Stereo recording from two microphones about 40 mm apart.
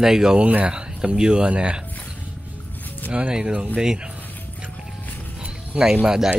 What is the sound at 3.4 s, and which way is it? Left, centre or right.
Speech, right.